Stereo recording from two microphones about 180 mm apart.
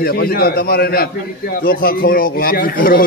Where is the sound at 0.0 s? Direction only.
55° left (ahead or behind).